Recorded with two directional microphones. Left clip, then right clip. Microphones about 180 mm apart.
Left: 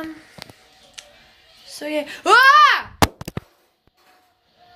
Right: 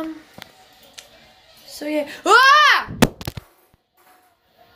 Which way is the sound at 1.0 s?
Centre (ahead or behind).